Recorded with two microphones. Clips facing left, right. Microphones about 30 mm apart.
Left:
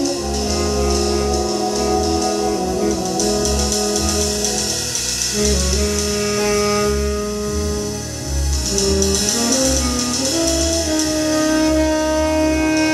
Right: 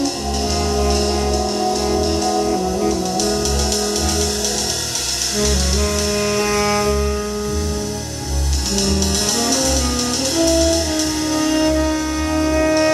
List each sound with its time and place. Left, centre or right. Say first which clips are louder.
0.8 s music: even; centre
2.4 s music: even; centre
6.1 s music: even; centre
9.4 s music: left 1 dB; centre